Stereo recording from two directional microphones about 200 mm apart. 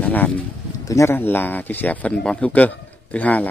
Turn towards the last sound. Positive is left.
turn(degrees=5)  # may be behind; listen again after turning